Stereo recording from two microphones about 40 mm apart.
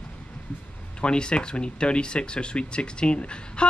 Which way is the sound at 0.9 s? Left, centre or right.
Left.